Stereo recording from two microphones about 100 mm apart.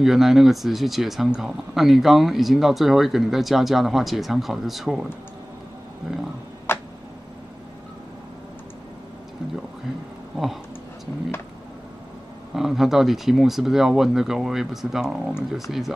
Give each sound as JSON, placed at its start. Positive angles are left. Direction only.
{"t": 0.0, "sound": "speech", "side_deg": -5}
{"t": 6.1, "sound": "speech", "side_deg": -5}
{"t": 6.7, "sound": "a sound", "side_deg": 25}
{"t": 10.3, "sound": "speech", "side_deg": 0}
{"t": 12.5, "sound": "speech", "side_deg": -5}